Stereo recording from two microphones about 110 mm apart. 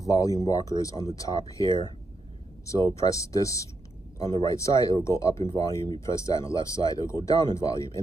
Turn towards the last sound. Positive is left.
turn(degrees=30)  # may be behind; listen again after turning